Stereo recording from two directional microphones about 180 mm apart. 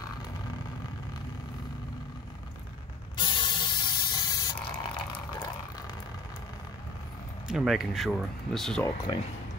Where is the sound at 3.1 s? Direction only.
25° left (ahead or behind).